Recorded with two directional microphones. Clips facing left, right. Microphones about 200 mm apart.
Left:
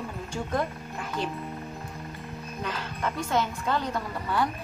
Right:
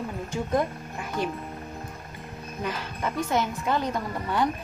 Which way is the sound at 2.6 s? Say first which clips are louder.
Right 1 dB; 15° right (ahead or behind).